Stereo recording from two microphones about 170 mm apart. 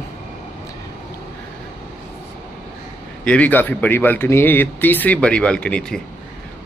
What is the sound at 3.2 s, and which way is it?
Speech, 10° left (ahead or behind).